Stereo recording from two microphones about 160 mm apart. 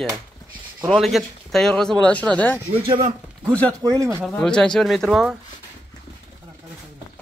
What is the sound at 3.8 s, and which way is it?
Speech, 20° right (ahead or behind).